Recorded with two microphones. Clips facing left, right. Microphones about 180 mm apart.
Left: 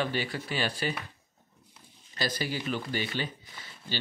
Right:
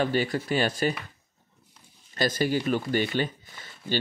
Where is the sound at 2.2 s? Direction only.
50° right (ahead or behind).